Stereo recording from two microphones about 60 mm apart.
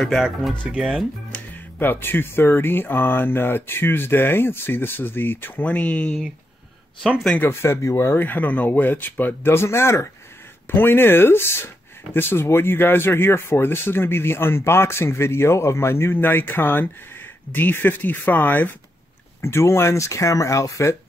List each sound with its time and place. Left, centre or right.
0.0 s speech: centre
0.7 s speech: centre
1.8 s speech: left; by 6.1 s centre
7.3 s speech: left
8.3 s speech: left
10.7 s speech: left
19.4 s speech: left